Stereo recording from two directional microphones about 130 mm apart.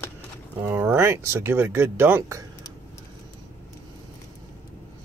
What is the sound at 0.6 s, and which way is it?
Speech, 15° right (ahead or behind).